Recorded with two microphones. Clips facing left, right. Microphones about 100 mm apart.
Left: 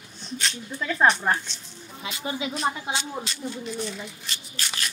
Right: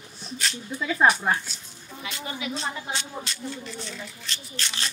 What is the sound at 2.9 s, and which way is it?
Speech, 5° left (ahead or behind).